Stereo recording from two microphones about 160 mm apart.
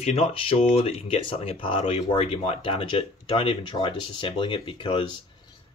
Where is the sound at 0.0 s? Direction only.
40° left (ahead or behind).